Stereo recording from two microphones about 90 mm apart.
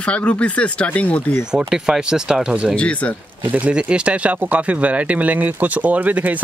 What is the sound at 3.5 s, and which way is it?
Speech, 15° right (ahead or behind).